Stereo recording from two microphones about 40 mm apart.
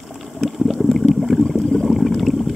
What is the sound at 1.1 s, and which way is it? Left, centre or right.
Boat, centre.